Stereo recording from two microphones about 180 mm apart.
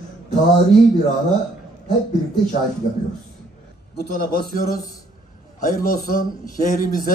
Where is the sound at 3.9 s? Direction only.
65° left (ahead or behind).